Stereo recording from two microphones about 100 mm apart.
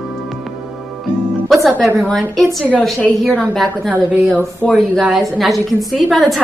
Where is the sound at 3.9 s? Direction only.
15° right (ahead or behind).